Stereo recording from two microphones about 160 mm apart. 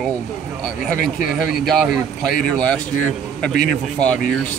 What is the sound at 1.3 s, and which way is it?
Speech, centre (ahead or behind).